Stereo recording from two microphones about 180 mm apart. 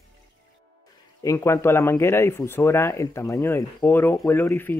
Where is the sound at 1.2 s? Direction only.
15° left (ahead or behind).